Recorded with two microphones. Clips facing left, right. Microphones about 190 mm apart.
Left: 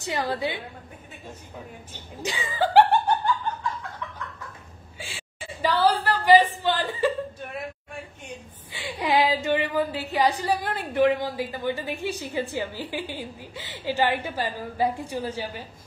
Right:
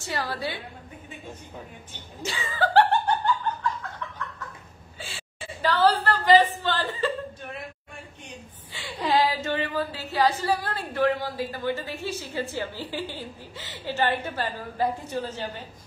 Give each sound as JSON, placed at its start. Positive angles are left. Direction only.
{"t": 0.0, "sound": "a woman's voice", "side_deg": 20}
{"t": 2.2, "sound": "speech", "side_deg": 15}
{"t": 5.0, "sound": "a sound", "side_deg": 10}
{"t": 8.7, "sound": "speech", "side_deg": 15}